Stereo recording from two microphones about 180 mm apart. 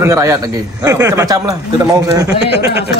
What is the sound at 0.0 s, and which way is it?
A man's voice, 20° right (ahead or behind).